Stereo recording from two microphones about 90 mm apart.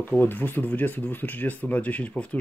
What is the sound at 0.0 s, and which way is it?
Speech, 20° left (ahead or behind).